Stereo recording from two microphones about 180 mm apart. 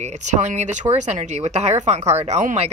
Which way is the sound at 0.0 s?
40° right (ahead or behind).